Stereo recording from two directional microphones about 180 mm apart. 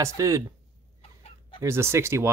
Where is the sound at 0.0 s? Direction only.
15° right (ahead or behind).